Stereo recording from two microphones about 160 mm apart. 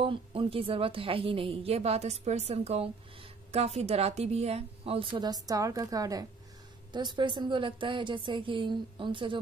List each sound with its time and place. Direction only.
0.0 s a woman's voice: 35° right (ahead or behind)